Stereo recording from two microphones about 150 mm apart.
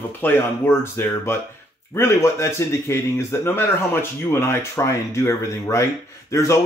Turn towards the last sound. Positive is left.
turn(degrees=20)  # may be behind; listen again after turning